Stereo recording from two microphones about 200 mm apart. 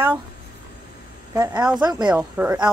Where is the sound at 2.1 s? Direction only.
10° right (ahead or behind).